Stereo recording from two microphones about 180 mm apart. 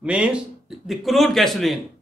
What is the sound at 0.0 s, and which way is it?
Speech, 5° right (ahead or behind).